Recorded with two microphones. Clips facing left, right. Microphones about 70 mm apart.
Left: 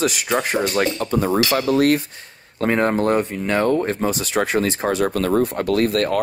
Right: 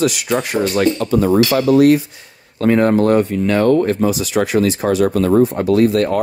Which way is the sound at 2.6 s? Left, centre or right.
Left.